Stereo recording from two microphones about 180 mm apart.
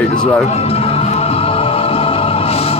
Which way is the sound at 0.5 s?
35° left (ahead or behind).